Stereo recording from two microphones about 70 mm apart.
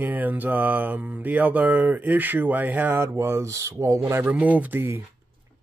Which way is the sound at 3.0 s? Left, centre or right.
Right.